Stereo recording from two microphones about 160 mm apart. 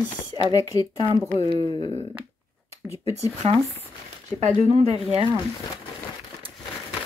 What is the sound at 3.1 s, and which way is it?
Speech, 40° right (ahead or behind).